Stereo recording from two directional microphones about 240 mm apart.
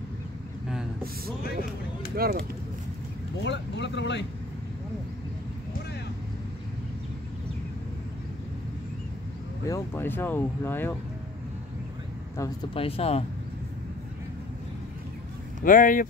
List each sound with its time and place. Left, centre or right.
2.1 s speech: right
3.4 s speech: left
9.7 s speech: centre
12.4 s speech: left
15.6 s speech: left